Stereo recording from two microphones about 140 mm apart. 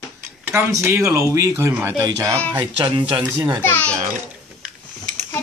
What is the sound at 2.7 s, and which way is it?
Speech, 35° right (ahead or behind).